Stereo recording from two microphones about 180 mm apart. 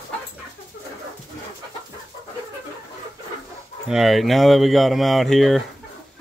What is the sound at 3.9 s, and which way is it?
Speech, centre (ahead or behind).